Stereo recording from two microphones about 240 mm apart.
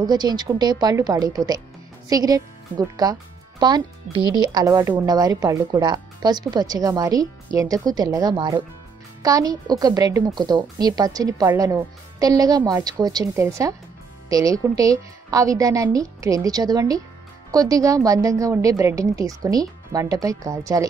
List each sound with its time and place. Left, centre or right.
0.0 s a woman's voice: centre